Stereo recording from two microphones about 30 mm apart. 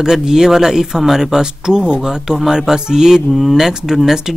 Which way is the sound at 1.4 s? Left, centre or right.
Right.